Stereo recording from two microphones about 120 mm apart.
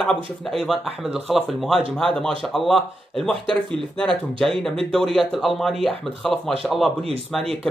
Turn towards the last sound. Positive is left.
turn(degrees=5)  # may be behind; listen again after turning